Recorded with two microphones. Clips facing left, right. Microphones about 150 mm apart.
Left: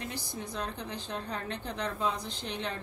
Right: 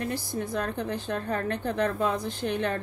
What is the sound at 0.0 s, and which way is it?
Speech, 55° right (ahead or behind).